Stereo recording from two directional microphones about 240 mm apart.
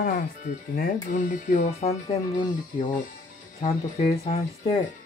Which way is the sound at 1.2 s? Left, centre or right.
Left.